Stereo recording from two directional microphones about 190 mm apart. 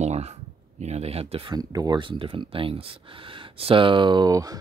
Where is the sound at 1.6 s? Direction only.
20° right (ahead or behind).